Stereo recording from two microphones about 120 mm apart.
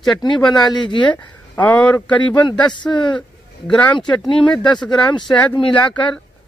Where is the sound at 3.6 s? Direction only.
10° left (ahead or behind).